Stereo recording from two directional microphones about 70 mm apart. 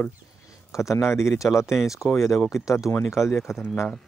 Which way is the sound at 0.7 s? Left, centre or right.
Left.